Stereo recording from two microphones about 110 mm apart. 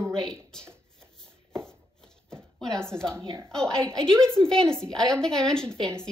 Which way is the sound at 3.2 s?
50° right (ahead or behind).